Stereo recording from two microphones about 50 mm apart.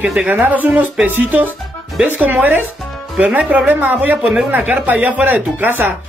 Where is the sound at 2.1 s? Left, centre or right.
Right.